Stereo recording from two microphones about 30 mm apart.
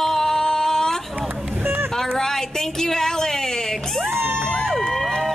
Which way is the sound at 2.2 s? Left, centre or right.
Centre.